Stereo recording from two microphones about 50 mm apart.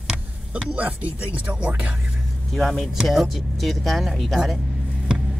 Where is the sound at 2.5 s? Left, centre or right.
Centre.